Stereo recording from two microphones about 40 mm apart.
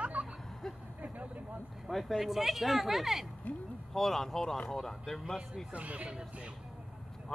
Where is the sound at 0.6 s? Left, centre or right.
Centre.